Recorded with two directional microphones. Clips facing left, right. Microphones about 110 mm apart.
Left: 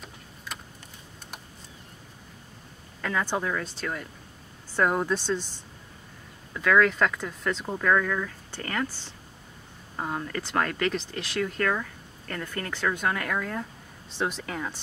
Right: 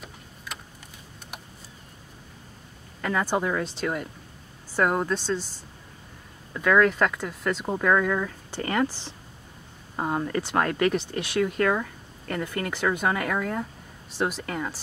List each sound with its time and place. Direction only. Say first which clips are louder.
3.0 s speech: right 3 dB; 5° right (ahead or behind)
4.7 s speech: right 1 dB; 5° right (ahead or behind)
6.5 s speech: right 1 dB; 5° right (ahead or behind)
7.6 s speech: right 2 dB; 15° right (ahead or behind)
9.9 s speech: right 5 dB; 20° right (ahead or behind); by 14.8 s centre (ahead or behind)